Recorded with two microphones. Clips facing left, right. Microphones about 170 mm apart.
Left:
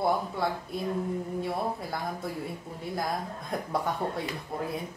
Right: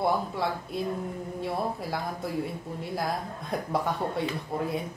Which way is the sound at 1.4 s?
Centre (ahead or behind).